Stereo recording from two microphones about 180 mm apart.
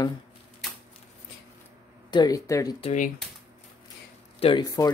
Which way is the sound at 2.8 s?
40° left (ahead or behind).